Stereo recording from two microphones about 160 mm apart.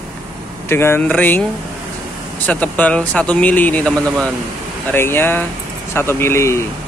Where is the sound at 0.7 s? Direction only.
15° left (ahead or behind).